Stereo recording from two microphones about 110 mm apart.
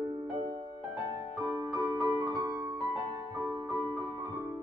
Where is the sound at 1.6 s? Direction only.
30° right (ahead or behind).